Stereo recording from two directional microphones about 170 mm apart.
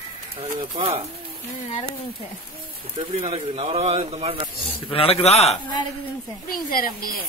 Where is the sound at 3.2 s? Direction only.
35° right (ahead or behind).